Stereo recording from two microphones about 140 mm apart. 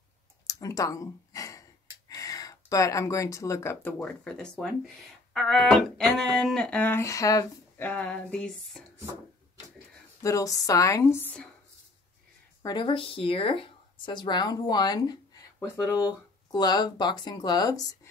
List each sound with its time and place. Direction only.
0.5 s speech: 25° left (ahead or behind)
7.8 s a sound: 10° left (ahead or behind)
10.2 s speech: 25° left (ahead or behind)
12.6 s speech: 35° left (ahead or behind)